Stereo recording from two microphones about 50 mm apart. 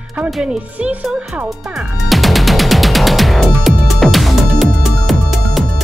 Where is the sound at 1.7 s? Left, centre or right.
Centre.